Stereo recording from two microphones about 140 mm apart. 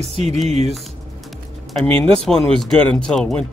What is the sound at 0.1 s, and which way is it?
Speech, 50° right (ahead or behind).